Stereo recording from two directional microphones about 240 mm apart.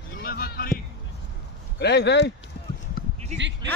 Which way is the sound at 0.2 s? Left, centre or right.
Left.